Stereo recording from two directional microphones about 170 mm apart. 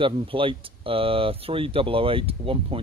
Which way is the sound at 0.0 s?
30° right (ahead or behind).